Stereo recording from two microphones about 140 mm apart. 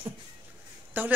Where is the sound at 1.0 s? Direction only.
15° right (ahead or behind).